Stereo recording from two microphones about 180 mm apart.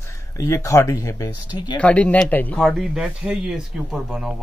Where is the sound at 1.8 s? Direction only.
5° left (ahead or behind).